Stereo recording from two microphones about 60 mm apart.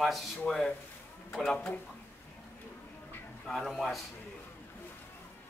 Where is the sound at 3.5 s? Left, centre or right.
Centre.